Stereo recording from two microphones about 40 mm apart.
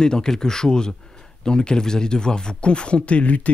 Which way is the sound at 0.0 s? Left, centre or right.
Centre.